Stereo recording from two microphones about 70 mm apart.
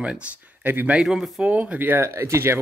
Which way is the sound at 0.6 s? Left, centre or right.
Right.